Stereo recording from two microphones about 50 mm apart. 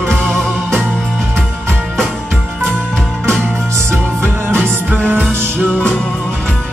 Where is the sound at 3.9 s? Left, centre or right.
Right.